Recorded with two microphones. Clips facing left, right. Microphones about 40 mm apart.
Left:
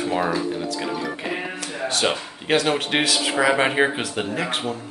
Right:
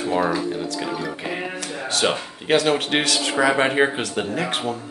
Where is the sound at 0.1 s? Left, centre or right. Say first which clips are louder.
Right 3 dB; centre.